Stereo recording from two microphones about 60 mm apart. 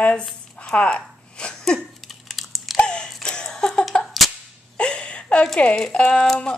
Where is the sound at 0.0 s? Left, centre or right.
Centre.